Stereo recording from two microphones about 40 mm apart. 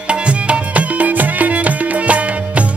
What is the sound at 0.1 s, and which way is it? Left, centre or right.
Music, right.